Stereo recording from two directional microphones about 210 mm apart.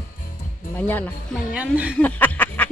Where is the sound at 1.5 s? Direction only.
5° right (ahead or behind).